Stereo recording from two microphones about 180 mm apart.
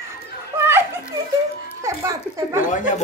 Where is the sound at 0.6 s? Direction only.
15° right (ahead or behind).